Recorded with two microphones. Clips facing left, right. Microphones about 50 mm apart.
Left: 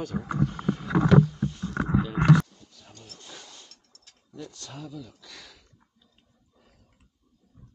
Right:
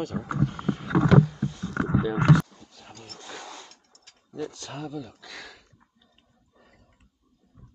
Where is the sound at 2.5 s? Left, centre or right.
Right.